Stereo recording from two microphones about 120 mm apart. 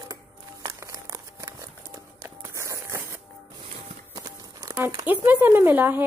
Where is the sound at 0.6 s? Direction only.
30° right (ahead or behind).